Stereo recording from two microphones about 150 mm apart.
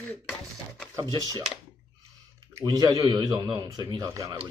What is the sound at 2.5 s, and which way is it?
Speech, 25° right (ahead or behind).